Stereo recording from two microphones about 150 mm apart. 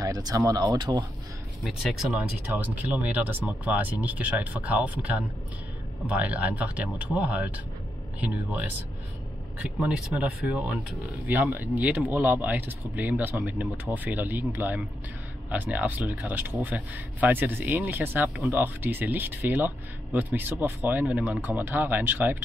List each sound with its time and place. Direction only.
0.0 s speech: 25° right (ahead or behind)
1.6 s speech: centre (ahead or behind)